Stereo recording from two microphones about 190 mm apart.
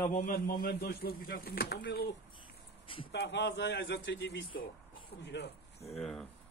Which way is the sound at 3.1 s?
60° left (ahead or behind).